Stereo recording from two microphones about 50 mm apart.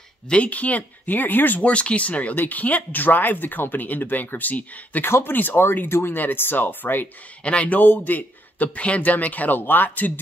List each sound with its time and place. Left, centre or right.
0.3 s speech: left
1.6 s speech: left
5.0 s speech: left
7.4 s speech: left
7.7 s speech: left